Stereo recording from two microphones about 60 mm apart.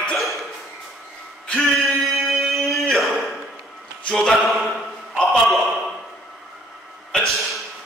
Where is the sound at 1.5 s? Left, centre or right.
Centre.